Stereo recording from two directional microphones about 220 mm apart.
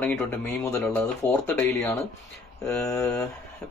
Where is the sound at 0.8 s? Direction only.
Centre (ahead or behind).